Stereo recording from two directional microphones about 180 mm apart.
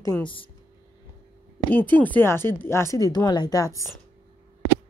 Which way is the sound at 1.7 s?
10° left (ahead or behind).